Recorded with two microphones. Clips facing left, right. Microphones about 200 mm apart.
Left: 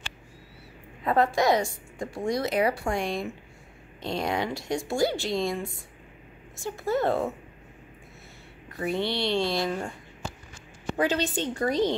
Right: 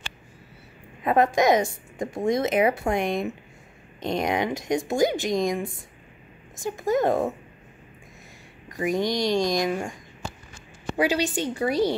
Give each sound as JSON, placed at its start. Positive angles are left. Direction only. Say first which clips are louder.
{"t": 1.0, "sound": "a woman's voice", "louder": "right 3 dB", "side_deg": -20}
{"t": 8.6, "sound": "speech", "louder": "right 4 dB", "side_deg": -15}
{"t": 11.0, "sound": "speech", "louder": "right 2 dB", "side_deg": -10}